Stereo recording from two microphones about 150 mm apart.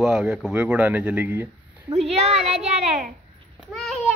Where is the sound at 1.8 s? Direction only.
45° right (ahead or behind).